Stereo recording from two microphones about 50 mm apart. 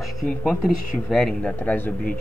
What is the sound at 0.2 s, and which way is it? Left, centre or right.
A man's voice, centre.